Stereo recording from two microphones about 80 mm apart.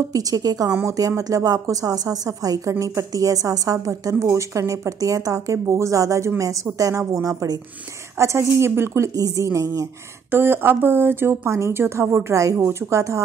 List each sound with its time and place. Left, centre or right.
0.1 s a woman's voice: right
8.2 s a woman's voice: right
9.1 s a woman's voice: right
10.3 s a woman's voice: right